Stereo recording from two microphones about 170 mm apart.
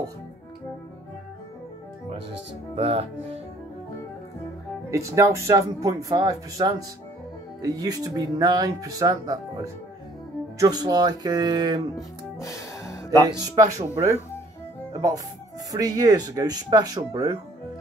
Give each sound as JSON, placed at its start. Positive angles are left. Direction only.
{"t": 2.7, "sound": "speech", "side_deg": -35}
{"t": 4.9, "sound": "speech", "side_deg": -20}
{"t": 12.5, "sound": "music", "side_deg": 20}
{"t": 13.6, "sound": "speech", "side_deg": -20}
{"t": 14.9, "sound": "speech", "side_deg": -20}